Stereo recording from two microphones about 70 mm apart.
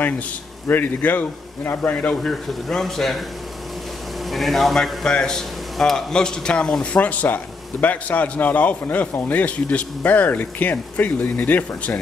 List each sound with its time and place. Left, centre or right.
0.7 s speech: left
2.2 s speech: centre
4.3 s speech: centre; by 12.0 s left